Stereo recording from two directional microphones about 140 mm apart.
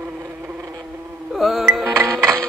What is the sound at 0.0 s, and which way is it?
Vehicle, 15° right (ahead or behind).